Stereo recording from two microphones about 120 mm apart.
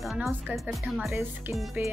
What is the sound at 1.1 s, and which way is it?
Speech, 15° right (ahead or behind).